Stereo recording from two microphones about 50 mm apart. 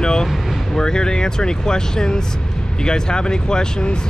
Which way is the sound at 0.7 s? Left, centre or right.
Centre.